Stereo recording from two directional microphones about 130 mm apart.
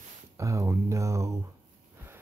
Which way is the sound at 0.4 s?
25° right (ahead or behind).